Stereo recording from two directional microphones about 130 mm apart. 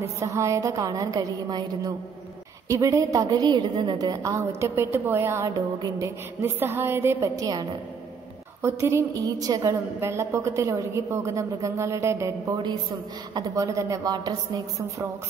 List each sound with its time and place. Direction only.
0.2 s a woman's voice: 25° right (ahead or behind)
8.6 s a woman's voice: 20° right (ahead or behind)